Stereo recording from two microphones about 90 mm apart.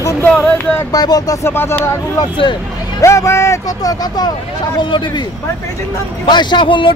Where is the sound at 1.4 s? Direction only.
25° left (ahead or behind).